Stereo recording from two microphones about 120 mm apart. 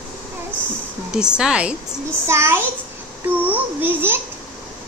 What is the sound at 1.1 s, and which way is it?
Speech, 5° right (ahead or behind).